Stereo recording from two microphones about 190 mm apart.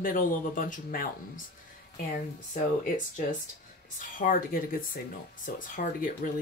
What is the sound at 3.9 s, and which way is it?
Speech, 45° left (ahead or behind).